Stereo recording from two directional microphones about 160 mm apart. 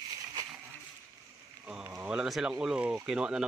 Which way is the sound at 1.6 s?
5° right (ahead or behind).